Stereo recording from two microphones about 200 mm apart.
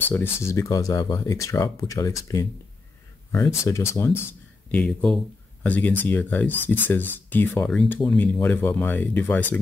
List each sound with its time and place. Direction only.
0.1 s speech: 10° left (ahead or behind)